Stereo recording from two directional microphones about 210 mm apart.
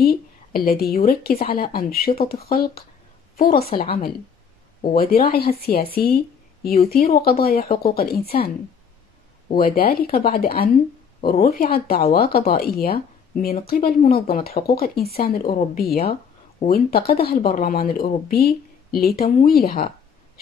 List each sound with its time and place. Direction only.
0.0 s a woman's voice: 45° left (ahead or behind)
4.8 s a woman's voice: 45° left (ahead or behind)
9.5 s speech: 45° left (ahead or behind)